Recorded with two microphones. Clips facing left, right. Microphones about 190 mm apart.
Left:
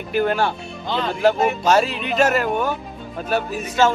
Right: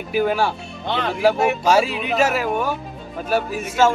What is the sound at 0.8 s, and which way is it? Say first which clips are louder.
Speech: even; 65° right (ahead or behind).